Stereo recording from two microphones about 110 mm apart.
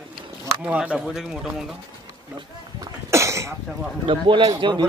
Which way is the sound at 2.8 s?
25° right (ahead or behind).